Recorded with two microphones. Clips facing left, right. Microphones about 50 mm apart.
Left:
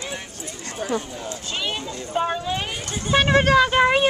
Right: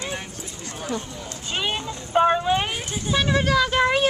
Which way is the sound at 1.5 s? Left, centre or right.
Centre.